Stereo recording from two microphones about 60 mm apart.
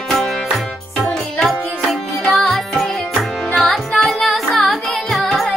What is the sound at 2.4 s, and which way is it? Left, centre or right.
Music, centre.